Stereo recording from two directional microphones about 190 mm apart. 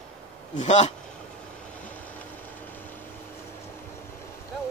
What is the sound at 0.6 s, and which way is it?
Speech, 35° left (ahead or behind).